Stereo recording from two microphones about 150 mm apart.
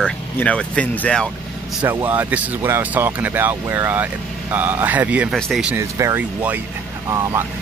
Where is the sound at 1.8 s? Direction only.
10° right (ahead or behind).